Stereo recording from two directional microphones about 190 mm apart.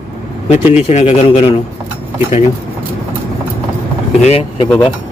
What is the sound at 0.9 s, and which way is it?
Speech, 35° left (ahead or behind).